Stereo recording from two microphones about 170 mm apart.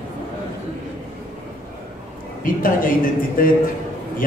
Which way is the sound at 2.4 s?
55° left (ahead or behind).